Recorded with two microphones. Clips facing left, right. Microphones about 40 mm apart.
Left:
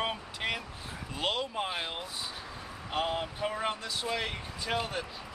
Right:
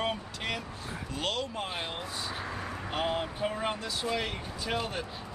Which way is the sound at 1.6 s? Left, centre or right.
Centre.